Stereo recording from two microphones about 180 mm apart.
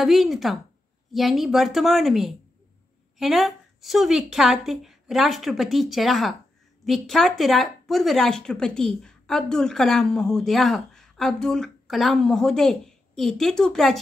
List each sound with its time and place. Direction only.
0.0 s speech: centre (ahead or behind)